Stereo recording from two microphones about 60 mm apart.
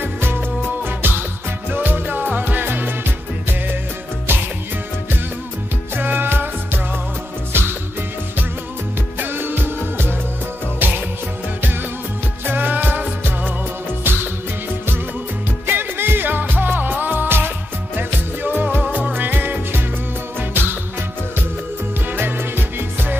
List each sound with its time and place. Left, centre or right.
0.0 s music: right
5.9 s music: right
7.5 s music: right
9.2 s music: right
12.4 s music: right
15.6 s music: right
22.1 s music: right